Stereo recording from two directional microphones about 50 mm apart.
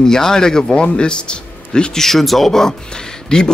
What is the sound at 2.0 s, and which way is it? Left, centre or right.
Speech, centre.